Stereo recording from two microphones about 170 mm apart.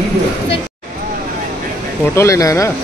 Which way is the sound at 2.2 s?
20° left (ahead or behind).